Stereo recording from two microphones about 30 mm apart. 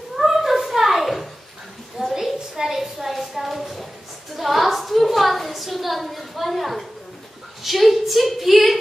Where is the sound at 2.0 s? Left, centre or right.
Centre.